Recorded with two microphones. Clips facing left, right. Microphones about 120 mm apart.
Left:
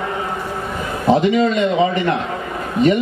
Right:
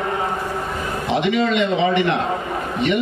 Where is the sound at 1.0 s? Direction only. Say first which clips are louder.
Left 5 dB; 40° left (ahead or behind).